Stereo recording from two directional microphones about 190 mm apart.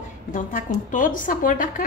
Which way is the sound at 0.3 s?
45° left (ahead or behind).